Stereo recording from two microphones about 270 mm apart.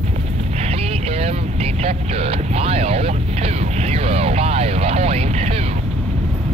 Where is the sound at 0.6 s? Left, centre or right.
Right.